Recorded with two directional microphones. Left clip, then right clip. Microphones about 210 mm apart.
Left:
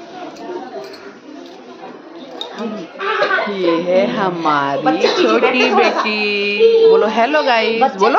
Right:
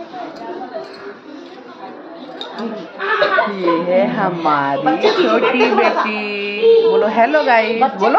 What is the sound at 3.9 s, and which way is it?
Speech, 15° left (ahead or behind).